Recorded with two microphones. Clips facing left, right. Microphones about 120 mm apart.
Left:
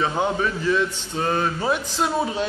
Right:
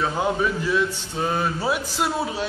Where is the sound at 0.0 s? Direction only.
5° right (ahead or behind).